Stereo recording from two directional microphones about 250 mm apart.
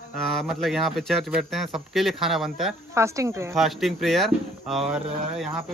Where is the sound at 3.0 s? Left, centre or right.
Centre.